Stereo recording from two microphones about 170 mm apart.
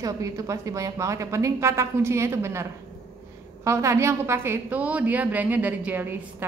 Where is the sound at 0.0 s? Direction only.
20° right (ahead or behind).